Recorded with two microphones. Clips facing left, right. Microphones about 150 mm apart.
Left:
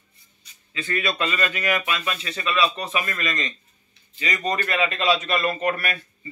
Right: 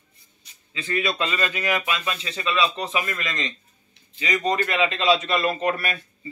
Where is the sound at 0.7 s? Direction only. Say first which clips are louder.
Right 1 dB; 20° right (ahead or behind).